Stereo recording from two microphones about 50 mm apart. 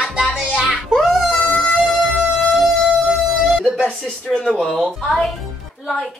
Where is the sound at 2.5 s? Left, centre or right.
Centre.